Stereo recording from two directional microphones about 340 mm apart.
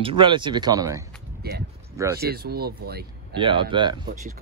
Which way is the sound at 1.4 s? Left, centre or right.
Right.